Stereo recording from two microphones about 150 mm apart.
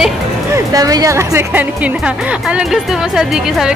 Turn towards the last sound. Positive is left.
turn(degrees=-5)  # may be behind; listen again after turning